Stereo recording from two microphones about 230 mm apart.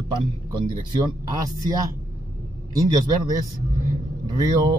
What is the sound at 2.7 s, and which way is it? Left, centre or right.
A man's voice, centre.